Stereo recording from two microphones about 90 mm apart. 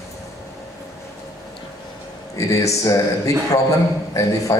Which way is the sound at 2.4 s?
35° left (ahead or behind).